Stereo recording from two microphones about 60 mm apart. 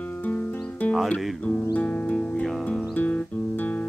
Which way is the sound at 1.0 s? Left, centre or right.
Left.